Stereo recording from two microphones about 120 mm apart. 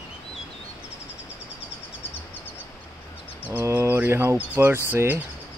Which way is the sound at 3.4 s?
15° right (ahead or behind).